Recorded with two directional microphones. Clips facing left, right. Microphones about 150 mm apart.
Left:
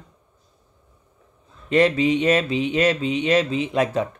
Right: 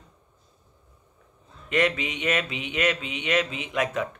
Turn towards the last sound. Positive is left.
turn(degrees=30)  # may be behind; listen again after turning